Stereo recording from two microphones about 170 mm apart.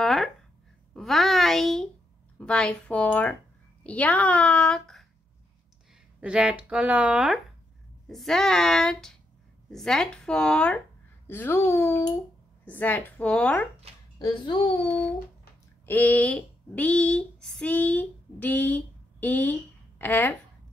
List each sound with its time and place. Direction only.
0.0 s a sound: centre (ahead or behind)
2.3 s a woman's voice: 5° left (ahead or behind)
6.2 s speech: 5° right (ahead or behind)
14.1 s a woman's voice: 25° left (ahead or behind)
15.8 s speech: 10° left (ahead or behind)